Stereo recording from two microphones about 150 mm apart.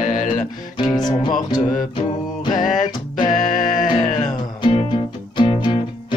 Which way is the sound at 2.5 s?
60° left (ahead or behind).